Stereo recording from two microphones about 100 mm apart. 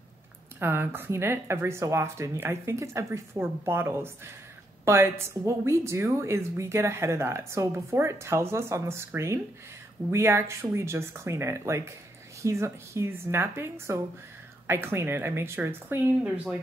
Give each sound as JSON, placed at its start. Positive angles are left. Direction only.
{"t": 0.6, "sound": "a woman's voice", "side_deg": -20}